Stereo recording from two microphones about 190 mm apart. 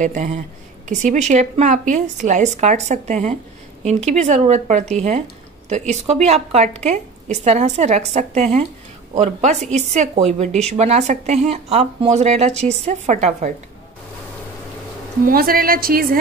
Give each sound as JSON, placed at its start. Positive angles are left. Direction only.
{"t": 0.0, "sound": "a woman's voice", "side_deg": -40}
{"t": 15.2, "sound": "a woman's voice", "side_deg": -50}